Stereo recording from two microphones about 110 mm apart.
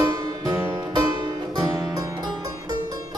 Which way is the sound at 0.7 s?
45° right (ahead or behind).